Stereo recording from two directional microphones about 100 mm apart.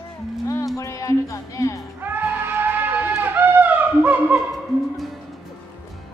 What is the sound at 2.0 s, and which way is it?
Music, 20° right (ahead or behind).